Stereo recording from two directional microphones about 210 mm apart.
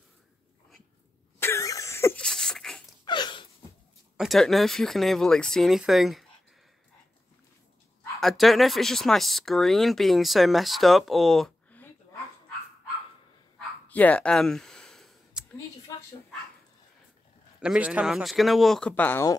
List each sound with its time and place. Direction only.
1.4 s cough: 15° left (ahead or behind)
3.1 s gasp: 20° left (ahead or behind)
4.2 s speech: centre (ahead or behind)
8.2 s speech: centre (ahead or behind)
13.8 s clicking: 5° left (ahead or behind)
17.6 s speech: 5° right (ahead or behind)